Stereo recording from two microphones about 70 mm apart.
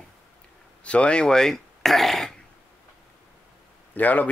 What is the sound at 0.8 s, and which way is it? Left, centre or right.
Speech, centre.